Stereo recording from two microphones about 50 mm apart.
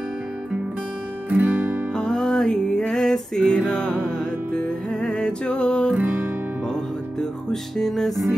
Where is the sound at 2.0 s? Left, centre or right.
Centre.